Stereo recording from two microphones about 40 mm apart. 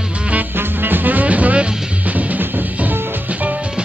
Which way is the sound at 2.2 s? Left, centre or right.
Right.